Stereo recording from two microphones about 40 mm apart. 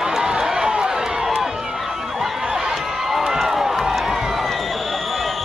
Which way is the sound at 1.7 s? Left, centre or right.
Centre.